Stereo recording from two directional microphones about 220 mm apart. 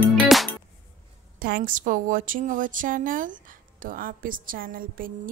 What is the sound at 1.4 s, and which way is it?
A woman's voice, 40° right (ahead or behind).